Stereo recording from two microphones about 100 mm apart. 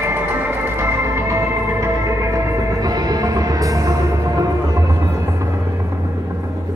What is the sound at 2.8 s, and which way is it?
Music, 40° right (ahead or behind).